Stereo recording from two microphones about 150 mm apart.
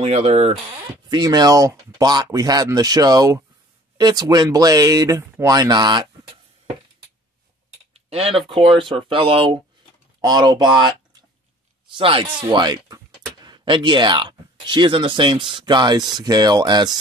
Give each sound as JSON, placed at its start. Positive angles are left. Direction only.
{"t": 0.0, "sound": "speech", "side_deg": -45}
{"t": 1.1, "sound": "speech", "side_deg": -25}
{"t": 7.9, "sound": "typing", "side_deg": -40}
{"t": 8.5, "sound": "speech", "side_deg": -35}